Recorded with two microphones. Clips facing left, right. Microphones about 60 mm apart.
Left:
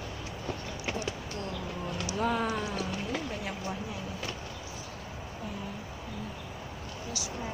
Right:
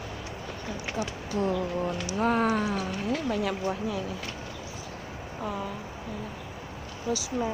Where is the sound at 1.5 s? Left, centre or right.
Right.